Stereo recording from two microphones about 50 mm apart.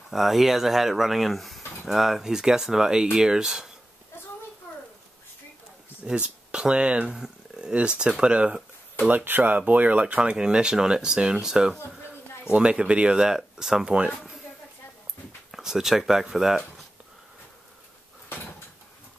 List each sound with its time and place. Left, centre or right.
0.1 s speech: centre
6.0 s speech: centre
9.1 s speech: right; by 13.9 s centre
15.5 s speech: centre